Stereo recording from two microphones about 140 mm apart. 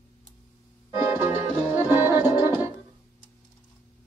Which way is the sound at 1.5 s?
20° right (ahead or behind).